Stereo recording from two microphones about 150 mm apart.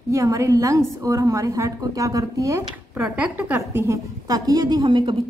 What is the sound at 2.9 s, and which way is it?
A woman's voice, 5° right (ahead or behind).